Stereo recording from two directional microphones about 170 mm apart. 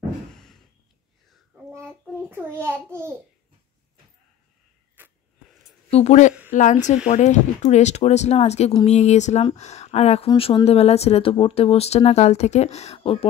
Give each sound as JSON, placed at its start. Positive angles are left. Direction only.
{"t": 1.3, "sound": "child singing", "side_deg": 0}
{"t": 2.6, "sound": "a child's voice", "side_deg": -15}
{"t": 5.0, "sound": "a sound", "side_deg": -10}
{"t": 5.9, "sound": "speech", "side_deg": 40}